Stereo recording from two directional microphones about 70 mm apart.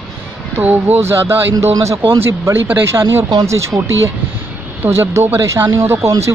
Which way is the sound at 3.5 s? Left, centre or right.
Right.